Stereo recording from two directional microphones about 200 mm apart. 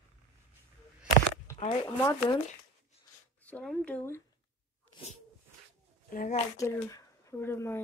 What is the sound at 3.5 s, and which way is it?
Speech, 5° left (ahead or behind).